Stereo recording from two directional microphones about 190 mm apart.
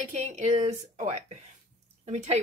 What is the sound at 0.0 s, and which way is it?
A woman's voice, 40° right (ahead or behind).